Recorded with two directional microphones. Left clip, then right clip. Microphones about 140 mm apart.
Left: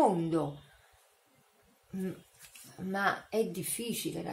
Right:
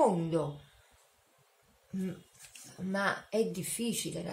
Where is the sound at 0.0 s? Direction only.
30° left (ahead or behind).